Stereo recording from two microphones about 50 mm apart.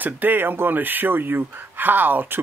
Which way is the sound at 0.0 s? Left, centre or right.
Right.